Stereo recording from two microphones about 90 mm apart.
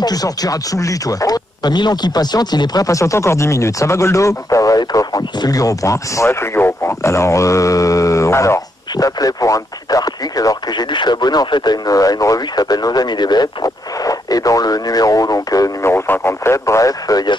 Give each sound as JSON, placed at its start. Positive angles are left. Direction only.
{"t": 0.0, "sound": "speech", "side_deg": 45}
{"t": 8.9, "sound": "radio", "side_deg": 40}
{"t": 10.9, "sound": "speech", "side_deg": 55}
{"t": 15.9, "sound": "speech", "side_deg": 25}